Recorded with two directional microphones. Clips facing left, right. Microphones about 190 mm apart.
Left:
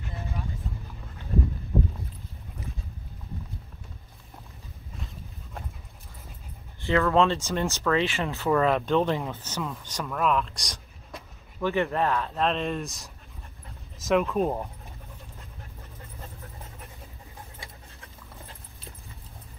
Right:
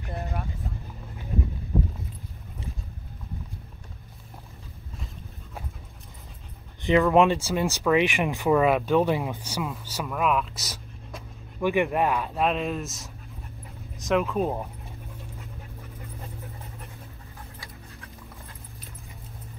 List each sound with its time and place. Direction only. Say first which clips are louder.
0.1 s vehicle: right 4 dB; 55° right (ahead or behind)
6.8 s speech: right 3 dB; 15° right (ahead or behind)
11.6 s speech: right 2 dB; 15° right (ahead or behind)